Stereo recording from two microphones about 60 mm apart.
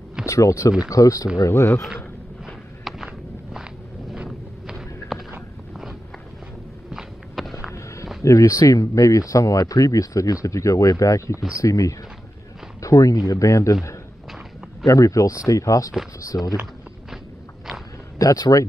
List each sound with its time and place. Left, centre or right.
0.3 s speech: left
1.4 s speech: left
2.4 s a sound: centre
4.6 s a sound: centre
6.9 s walk: centre
7.7 s a sound: left
8.2 s speech: left
12.8 s speech: left
13.3 s speech: left
14.9 s speech: left
15.9 s speech: centre
18.2 s speech: left